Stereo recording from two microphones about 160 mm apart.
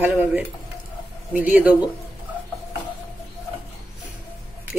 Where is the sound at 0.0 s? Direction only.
10° right (ahead or behind).